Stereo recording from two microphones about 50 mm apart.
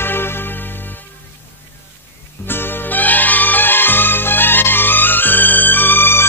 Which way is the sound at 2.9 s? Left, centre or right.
Left.